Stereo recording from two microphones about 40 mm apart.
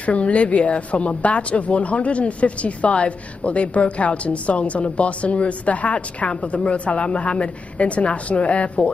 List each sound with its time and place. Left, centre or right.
0.0 s speech: left